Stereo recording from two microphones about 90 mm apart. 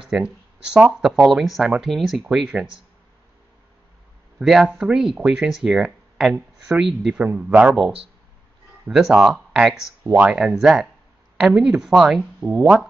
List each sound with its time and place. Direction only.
0.0 s speech: 10° right (ahead or behind)
4.4 s speech: centre (ahead or behind)
7.3 s speech: 15° right (ahead or behind)
8.8 s speech: 10° right (ahead or behind)